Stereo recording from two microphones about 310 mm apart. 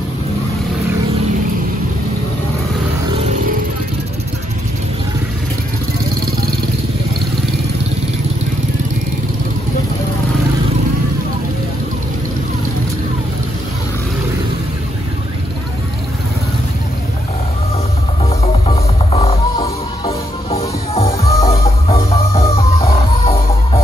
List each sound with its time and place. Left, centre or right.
18.4 s music: centre